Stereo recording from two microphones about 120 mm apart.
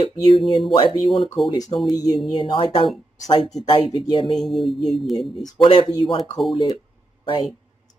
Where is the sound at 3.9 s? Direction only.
45° left (ahead or behind).